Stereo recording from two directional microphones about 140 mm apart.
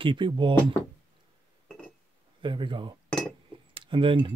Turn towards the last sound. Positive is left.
turn(degrees=-40)  # may be behind; listen again after turning